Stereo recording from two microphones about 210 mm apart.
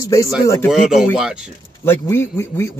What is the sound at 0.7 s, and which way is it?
Speech, centre (ahead or behind).